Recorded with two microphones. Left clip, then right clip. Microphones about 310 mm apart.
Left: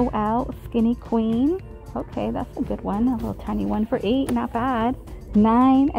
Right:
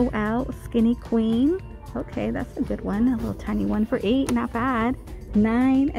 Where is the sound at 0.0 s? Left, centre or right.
Centre.